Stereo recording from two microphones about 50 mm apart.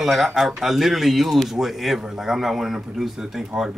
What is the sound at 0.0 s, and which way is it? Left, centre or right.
Speech, centre.